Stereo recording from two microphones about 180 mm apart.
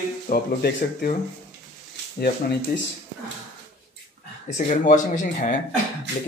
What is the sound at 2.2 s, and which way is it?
Speech, 65° left (ahead or behind).